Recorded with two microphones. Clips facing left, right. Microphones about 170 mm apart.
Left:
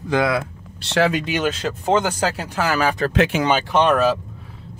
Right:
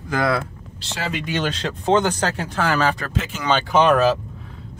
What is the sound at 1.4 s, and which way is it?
Speech, 5° left (ahead or behind).